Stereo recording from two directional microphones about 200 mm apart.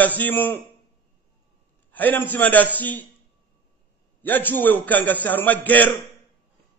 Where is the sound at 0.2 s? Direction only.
10° left (ahead or behind).